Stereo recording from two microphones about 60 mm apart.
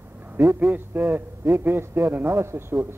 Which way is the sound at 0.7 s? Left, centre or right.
Right.